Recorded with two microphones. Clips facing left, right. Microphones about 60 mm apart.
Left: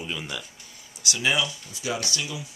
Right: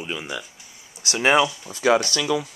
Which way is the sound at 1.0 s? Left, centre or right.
Right.